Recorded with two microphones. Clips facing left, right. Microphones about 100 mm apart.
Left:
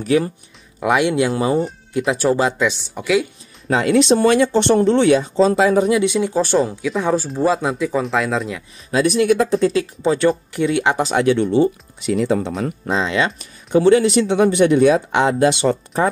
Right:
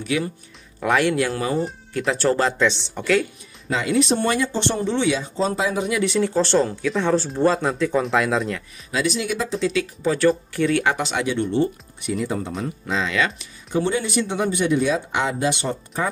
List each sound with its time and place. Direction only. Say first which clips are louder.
0.0 s speech: left 7 dB; 35° left (ahead or behind)
0.7 s speech: left 3 dB; 15° left (ahead or behind)
3.7 s speech: left 6 dB; 65° left (ahead or behind); by 5.8 s 80° left
6.0 s speech: left 2 dB; 15° left (ahead or behind)
8.9 s speech: left 8 dB; 55° left (ahead or behind)
10.0 s speech: left 2 dB; 20° left (ahead or behind)
11.0 s speech: left 6 dB; 40° left (ahead or behind)
12.0 s speech: left 7 dB; 80° left
12.8 s speech: left 3 dB; 30° left (ahead or behind)
13.7 s speech: left 10 dB; 80° left